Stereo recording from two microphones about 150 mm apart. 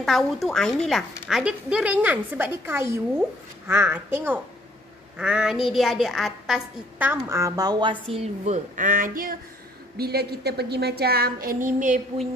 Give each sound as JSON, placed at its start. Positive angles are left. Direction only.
{"t": 0.0, "sound": "a woman's voice", "side_deg": 0}
{"t": 7.2, "sound": "speech", "side_deg": -20}
{"t": 9.9, "sound": "a woman's voice", "side_deg": -90}